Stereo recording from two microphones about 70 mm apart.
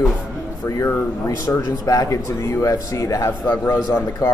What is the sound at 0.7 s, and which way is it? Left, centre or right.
Speech, left.